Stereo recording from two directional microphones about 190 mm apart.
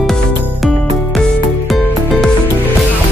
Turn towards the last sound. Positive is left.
turn(degrees=0)  # may be behind; listen again after turning